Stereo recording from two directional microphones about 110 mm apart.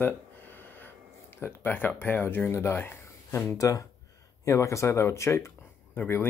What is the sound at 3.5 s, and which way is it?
Speech, 30° left (ahead or behind).